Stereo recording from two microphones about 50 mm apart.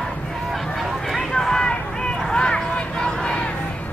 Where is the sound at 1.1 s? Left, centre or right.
Centre.